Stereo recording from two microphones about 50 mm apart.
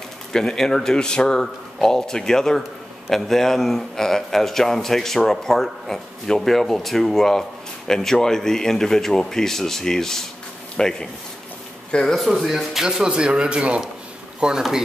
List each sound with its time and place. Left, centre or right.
0.3 s a man's voice: centre
12.2 s speech: centre